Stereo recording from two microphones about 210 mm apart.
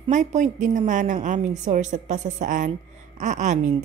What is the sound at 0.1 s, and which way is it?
A woman's voice, 35° right (ahead or behind).